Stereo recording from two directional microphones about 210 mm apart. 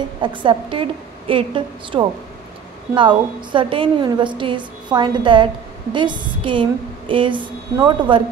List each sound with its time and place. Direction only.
0.2 s a woman's voice: 25° right (ahead or behind)